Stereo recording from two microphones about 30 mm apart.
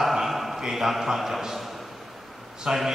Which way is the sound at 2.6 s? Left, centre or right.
Centre.